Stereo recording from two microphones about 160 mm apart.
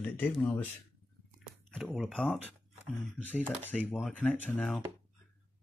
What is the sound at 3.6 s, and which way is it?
Speech, 10° left (ahead or behind).